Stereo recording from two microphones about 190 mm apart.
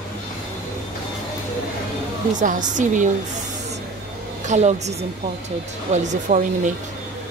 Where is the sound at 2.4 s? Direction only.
40° right (ahead or behind).